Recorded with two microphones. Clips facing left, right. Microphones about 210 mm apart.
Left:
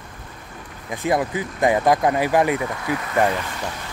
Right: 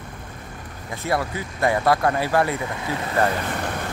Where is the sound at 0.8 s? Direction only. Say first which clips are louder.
Left 3 dB; 15° left (ahead or behind).